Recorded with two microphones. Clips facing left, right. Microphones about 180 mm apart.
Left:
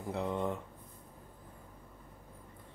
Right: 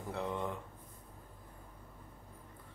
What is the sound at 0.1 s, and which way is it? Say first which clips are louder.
Speech: left 4 dB; 20° left (ahead or behind).